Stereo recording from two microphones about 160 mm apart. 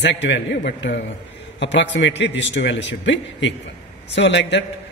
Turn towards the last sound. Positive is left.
turn(degrees=90)